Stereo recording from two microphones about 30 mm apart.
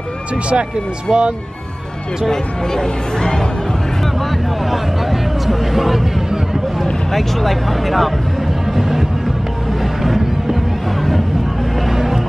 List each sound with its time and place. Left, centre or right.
1.1 s speech: centre
2.7 s speech: centre
4.6 s a sound: centre
6.8 s speech: centre
8.7 s music: centre
10.0 s music: centre